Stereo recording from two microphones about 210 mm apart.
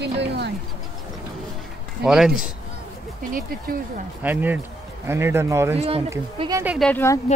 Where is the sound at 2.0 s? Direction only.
5° right (ahead or behind).